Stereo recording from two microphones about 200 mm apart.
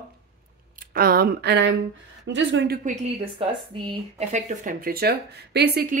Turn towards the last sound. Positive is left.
turn(degrees=-50)  # may be behind; listen again after turning